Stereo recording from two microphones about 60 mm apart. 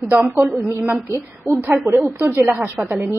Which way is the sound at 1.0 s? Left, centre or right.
Right.